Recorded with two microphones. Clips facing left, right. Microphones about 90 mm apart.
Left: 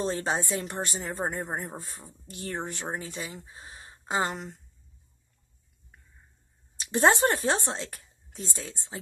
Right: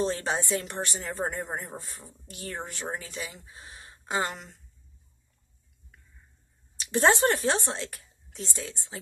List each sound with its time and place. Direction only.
0.1 s a woman's voice: 25° left (ahead or behind)
6.9 s a woman's voice: 25° left (ahead or behind)